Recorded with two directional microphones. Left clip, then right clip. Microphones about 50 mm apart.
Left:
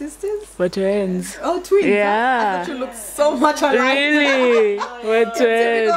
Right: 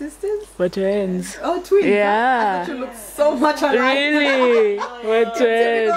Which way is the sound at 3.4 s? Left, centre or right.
Left.